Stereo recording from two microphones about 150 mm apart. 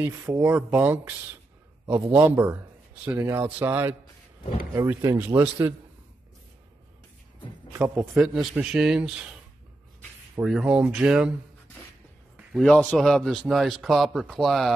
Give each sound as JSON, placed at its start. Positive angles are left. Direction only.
{"t": 0.0, "sound": "speech", "side_deg": -15}
{"t": 1.9, "sound": "a man's voice", "side_deg": -25}
{"t": 2.1, "sound": "speech", "side_deg": -10}
{"t": 7.7, "sound": "a man's voice", "side_deg": -10}
{"t": 10.3, "sound": "speech", "side_deg": -5}
{"t": 12.5, "sound": "a man's voice", "side_deg": 5}